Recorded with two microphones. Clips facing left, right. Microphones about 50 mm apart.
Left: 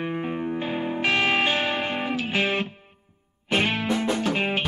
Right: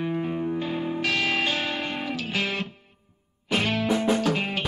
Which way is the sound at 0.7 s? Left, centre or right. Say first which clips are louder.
Left 2 dB; left.